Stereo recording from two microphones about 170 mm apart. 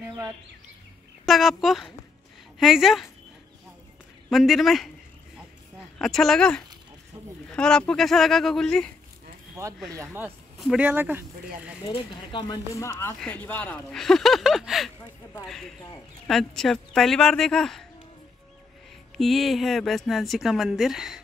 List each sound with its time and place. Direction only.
1.2 s speech: centre (ahead or behind)
4.3 s speech: centre (ahead or behind)
5.9 s speech: centre (ahead or behind)
10.6 s speech: 5° right (ahead or behind)
11.9 s speech: 25° left (ahead or behind); by 17.8 s centre (ahead or behind)
19.1 s speech: centre (ahead or behind)